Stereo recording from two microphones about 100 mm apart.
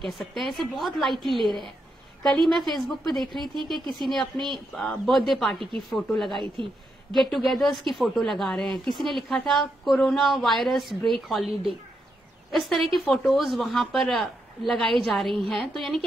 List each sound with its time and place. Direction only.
0.0 s a woman's voice: centre (ahead or behind)
6.4 s a woman's voice: 55° right (ahead or behind)
7.1 s a woman's voice: centre (ahead or behind)